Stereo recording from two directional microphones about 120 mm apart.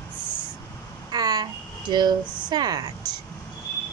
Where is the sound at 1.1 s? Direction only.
35° right (ahead or behind).